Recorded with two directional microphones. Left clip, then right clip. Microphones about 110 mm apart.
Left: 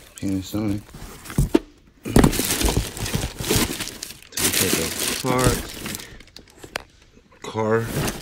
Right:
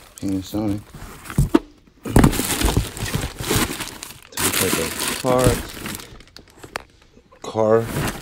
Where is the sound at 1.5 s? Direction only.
25° right (ahead or behind).